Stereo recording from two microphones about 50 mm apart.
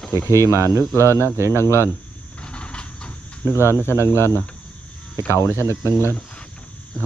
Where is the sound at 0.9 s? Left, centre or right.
Right.